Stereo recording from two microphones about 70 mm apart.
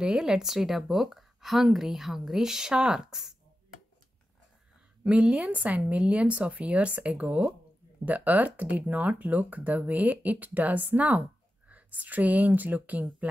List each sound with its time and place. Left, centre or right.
0.0 s a woman's voice: centre
5.0 s a woman's voice: centre